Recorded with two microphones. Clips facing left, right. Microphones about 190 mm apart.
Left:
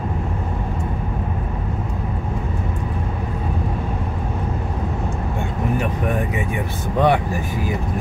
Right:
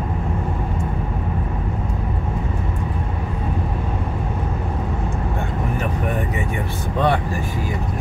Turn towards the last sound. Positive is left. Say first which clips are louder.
# left 2 dB
turn(degrees=15)  # may be behind; listen again after turning